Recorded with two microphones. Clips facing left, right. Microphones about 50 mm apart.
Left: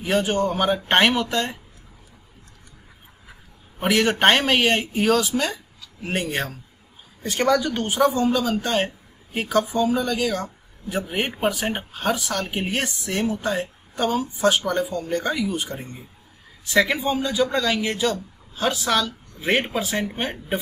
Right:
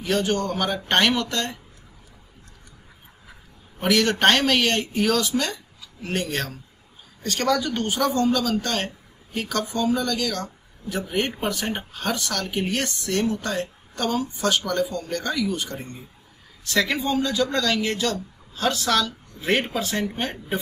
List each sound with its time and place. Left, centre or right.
0.0 s speech: centre
3.8 s speech: centre